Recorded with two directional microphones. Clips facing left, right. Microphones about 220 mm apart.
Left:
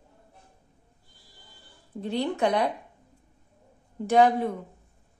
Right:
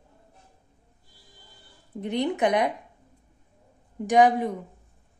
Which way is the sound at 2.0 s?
20° right (ahead or behind).